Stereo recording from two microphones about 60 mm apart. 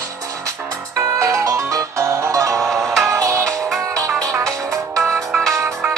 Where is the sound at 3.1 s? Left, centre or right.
Right.